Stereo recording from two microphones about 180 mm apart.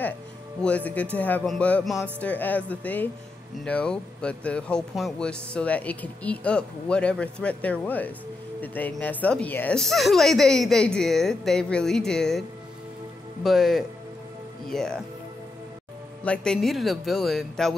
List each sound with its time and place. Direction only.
0.6 s a woman's voice: 5° left (ahead or behind)
16.3 s a woman's voice: centre (ahead or behind)